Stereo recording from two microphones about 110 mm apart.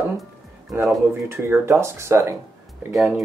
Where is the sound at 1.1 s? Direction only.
20° right (ahead or behind).